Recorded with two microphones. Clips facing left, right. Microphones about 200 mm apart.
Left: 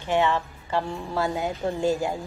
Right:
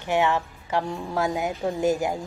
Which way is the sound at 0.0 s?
15° right (ahead or behind).